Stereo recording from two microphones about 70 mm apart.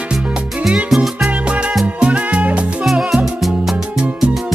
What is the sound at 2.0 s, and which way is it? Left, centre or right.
Music, centre.